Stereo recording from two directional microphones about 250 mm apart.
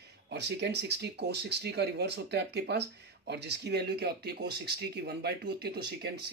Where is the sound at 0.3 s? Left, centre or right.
Right.